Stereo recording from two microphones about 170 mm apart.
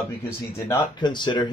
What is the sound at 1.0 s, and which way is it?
Speech, 25° left (ahead or behind).